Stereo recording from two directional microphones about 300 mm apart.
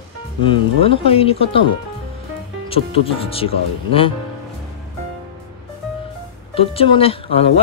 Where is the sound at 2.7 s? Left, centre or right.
Centre.